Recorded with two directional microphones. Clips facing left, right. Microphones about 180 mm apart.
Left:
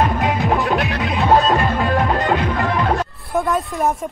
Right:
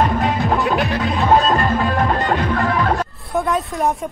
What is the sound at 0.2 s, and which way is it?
Music, centre (ahead or behind).